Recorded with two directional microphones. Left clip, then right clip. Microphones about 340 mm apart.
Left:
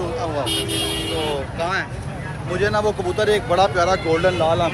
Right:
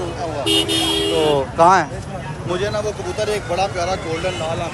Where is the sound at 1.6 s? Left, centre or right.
Centre.